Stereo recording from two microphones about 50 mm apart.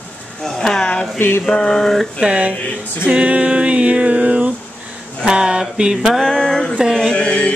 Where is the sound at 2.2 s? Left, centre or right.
Right.